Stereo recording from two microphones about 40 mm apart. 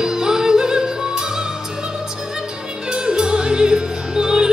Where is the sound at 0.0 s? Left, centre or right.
Centre.